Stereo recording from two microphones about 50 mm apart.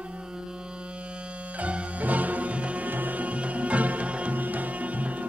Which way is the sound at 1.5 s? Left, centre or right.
Right.